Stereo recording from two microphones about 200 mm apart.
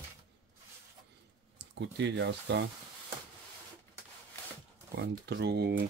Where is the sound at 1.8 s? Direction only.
60° right (ahead or behind).